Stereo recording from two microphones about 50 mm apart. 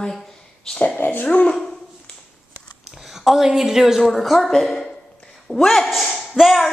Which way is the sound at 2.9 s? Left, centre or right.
Centre.